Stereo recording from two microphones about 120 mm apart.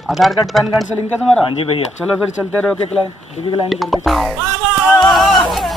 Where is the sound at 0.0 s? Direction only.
Centre (ahead or behind).